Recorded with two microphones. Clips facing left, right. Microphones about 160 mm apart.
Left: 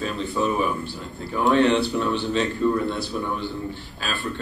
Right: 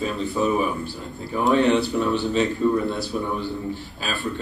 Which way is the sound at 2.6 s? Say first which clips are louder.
Even; 40° right (ahead or behind).